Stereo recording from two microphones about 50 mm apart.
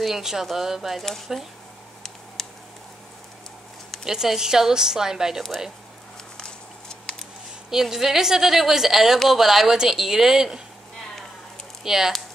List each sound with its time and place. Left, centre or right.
0.0 s a woman's voice: centre
2.4 s a sound: centre
4.0 s a woman's voice: centre
6.3 s a sound: centre
7.7 s a woman's voice: centre
11.8 s speech: centre